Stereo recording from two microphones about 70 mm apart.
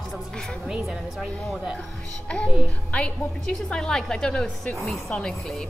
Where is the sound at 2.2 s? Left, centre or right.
Centre.